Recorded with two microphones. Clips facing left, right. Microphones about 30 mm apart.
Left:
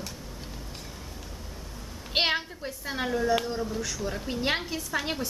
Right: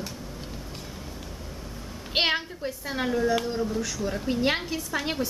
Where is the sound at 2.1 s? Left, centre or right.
Centre.